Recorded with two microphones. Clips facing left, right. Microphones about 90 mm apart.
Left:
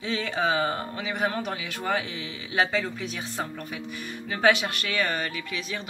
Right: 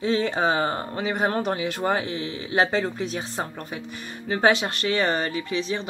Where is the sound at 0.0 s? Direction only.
35° right (ahead or behind).